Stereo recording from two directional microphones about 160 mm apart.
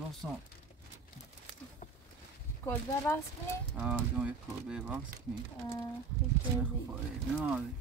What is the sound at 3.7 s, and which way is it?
Speech, 10° right (ahead or behind).